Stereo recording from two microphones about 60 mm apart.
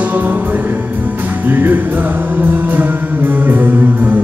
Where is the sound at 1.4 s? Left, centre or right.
Right.